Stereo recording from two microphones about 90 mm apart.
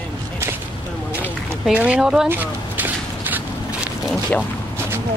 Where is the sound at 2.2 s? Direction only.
20° right (ahead or behind).